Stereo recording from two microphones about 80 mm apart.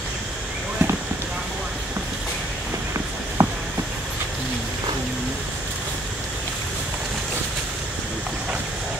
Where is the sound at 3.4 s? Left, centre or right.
Right.